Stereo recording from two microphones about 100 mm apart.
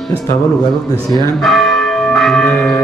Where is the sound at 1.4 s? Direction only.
Centre (ahead or behind).